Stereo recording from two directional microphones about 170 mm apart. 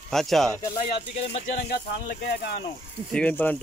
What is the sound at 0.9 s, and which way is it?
Speech, 35° left (ahead or behind).